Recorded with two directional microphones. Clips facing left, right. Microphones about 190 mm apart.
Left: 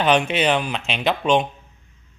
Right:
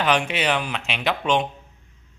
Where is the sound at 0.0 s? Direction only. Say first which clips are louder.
Left 4 dB; 25° left (ahead or behind).